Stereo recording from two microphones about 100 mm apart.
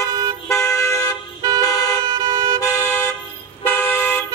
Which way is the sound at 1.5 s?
35° left (ahead or behind).